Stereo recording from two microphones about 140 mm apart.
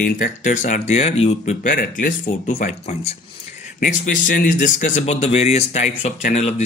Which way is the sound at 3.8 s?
70° left (ahead or behind).